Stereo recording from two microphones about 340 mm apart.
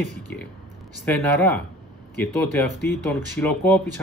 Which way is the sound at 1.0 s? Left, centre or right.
Centre.